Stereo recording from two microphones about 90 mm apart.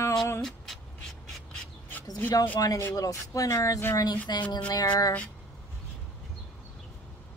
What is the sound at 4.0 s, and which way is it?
Speech, 50° left (ahead or behind).